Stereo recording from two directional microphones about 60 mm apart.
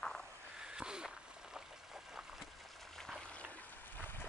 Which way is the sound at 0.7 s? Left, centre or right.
Centre.